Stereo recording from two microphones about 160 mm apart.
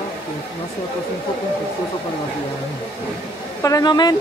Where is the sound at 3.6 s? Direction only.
20° left (ahead or behind).